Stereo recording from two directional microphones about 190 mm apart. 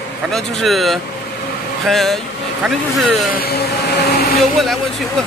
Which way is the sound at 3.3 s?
55° left (ahead or behind).